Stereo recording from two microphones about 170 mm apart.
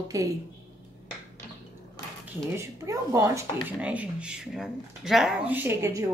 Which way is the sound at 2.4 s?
15° right (ahead or behind).